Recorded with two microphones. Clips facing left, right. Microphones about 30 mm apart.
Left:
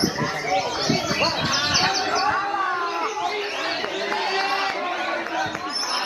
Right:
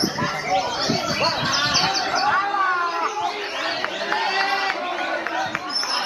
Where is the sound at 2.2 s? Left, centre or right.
Centre.